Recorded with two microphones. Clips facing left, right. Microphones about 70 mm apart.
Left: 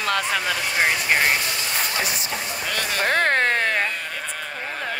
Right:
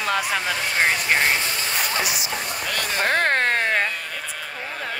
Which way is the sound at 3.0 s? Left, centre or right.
Right.